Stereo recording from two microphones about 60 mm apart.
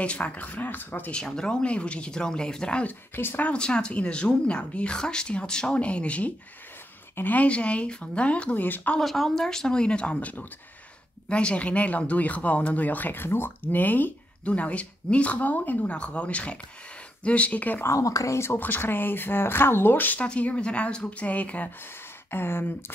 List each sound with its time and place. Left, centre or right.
0.0 s speech: left
1.1 s speech: centre
3.2 s speech: left
3.4 s speech: centre; by 7.4 s left
7.4 s speech: centre
9.0 s speech: centre; by 17.8 s left
17.8 s speech: left
18.6 s speech: left
20.2 s speech: left
22.3 s speech: left